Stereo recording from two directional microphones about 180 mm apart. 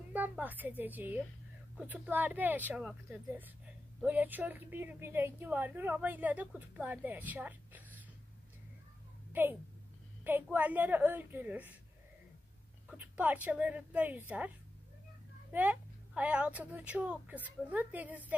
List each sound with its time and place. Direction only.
0.1 s a woman's voice: 10° right (ahead or behind)
9.3 s a woman's voice: 10° right (ahead or behind)
12.8 s a woman's voice: 10° right (ahead or behind)
15.5 s a woman's voice: 10° right (ahead or behind)